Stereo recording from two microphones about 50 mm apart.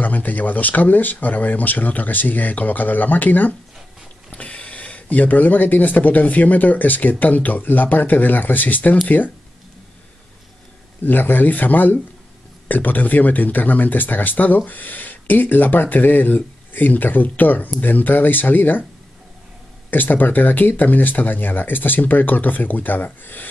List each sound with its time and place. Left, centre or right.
0.0 s speech: left
4.3 s speech: left
11.1 s speech: left
19.9 s speech: left